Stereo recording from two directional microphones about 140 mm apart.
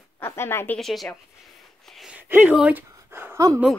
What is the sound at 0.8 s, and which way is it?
Speech, centre (ahead or behind).